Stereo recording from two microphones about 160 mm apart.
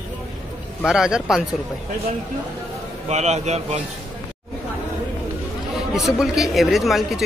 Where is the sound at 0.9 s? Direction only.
5° right (ahead or behind).